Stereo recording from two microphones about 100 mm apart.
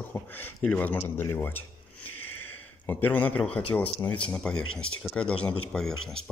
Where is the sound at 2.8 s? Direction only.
20° left (ahead or behind).